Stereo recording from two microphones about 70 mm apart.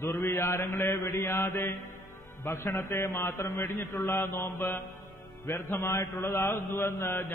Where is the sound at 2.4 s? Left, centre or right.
Left.